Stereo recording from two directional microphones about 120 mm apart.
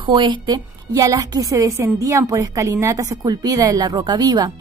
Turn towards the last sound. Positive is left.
turn(degrees=-35)  # may be behind; listen again after turning